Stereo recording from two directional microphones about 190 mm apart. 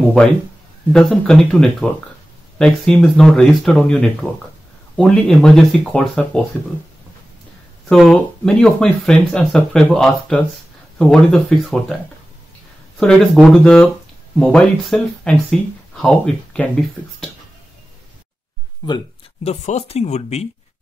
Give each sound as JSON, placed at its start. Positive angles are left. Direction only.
{"t": 0.9, "sound": "speech", "side_deg": 5}
{"t": 7.9, "sound": "speech", "side_deg": 5}
{"t": 13.0, "sound": "speech", "side_deg": 5}
{"t": 18.9, "sound": "speech", "side_deg": 30}